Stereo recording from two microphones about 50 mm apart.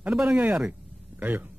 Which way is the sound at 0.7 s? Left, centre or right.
Right.